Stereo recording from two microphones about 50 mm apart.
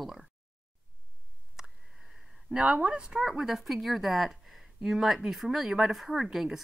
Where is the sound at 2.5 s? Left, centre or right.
Right.